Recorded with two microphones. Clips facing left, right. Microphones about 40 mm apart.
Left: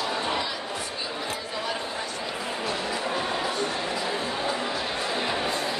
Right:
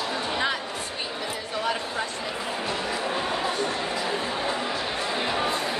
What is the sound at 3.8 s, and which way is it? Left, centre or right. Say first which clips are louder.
Music: right 1 dB; centre.